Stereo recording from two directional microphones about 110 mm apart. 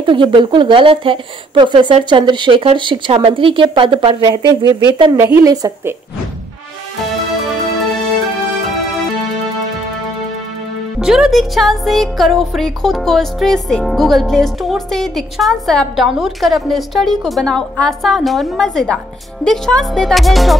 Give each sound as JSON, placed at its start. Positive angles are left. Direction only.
{"t": 0.0, "sound": "speech", "side_deg": -50}
{"t": 4.2, "sound": "speech", "side_deg": -40}
{"t": 5.1, "sound": "a woman's voice", "side_deg": -25}
{"t": 11.0, "sound": "speech", "side_deg": -5}